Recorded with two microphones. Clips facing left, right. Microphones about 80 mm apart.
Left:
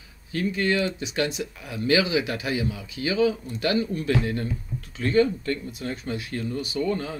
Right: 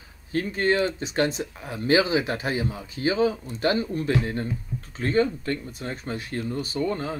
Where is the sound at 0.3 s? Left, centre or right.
Right.